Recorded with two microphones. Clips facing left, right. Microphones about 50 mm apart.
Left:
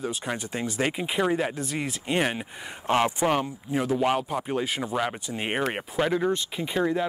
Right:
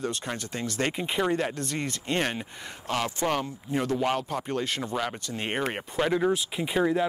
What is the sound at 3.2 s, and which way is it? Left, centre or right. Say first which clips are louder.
Speech: left 3 dB; centre.